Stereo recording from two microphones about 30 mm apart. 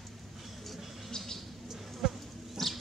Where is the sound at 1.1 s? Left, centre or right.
Centre.